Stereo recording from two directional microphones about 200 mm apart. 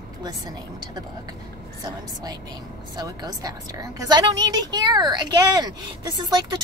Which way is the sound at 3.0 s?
20° right (ahead or behind).